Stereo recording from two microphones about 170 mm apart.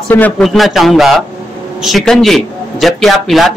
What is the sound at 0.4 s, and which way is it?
A man's voice, centre (ahead or behind).